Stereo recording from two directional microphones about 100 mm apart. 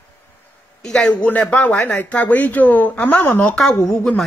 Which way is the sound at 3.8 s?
5° left (ahead or behind).